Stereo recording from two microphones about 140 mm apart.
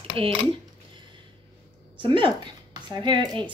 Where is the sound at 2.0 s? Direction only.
35° right (ahead or behind).